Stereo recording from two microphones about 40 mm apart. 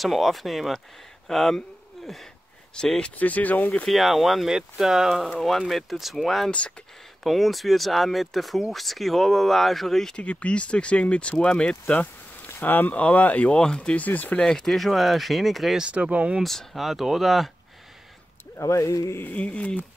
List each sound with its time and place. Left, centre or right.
0.0 s speech: centre
2.8 s speech: left
3.2 s speech: left
3.9 s speech: centre
4.5 s speech: centre
10.1 s speech: left
12.4 s speech: left
12.9 s speech: left
13.5 s speech: left
13.9 s speech: left
14.4 s speech: centre
15.8 s speech: right
16.4 s speech: centre
19.3 s speech: left